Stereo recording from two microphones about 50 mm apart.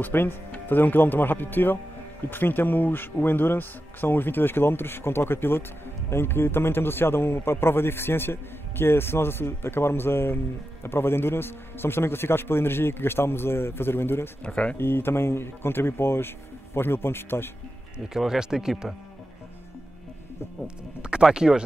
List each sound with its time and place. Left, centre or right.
0.0 s a man's voice: left
14.4 s speech: left
14.8 s a man's voice: left
17.9 s speech: centre
20.6 s speech: centre